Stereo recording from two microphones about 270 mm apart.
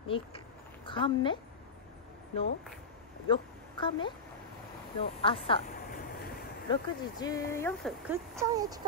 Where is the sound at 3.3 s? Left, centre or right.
Centre.